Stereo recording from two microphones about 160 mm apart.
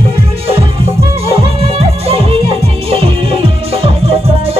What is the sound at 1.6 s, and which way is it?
Music, 40° right (ahead or behind).